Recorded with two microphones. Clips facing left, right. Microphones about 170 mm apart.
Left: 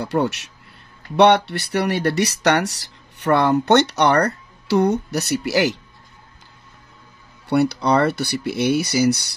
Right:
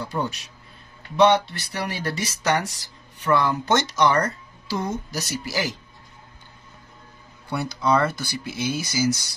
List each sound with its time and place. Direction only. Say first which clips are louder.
0.0 s a man's voice: left 7 dB; 80° left
7.4 s speech: left 6 dB; 70° left (ahead or behind)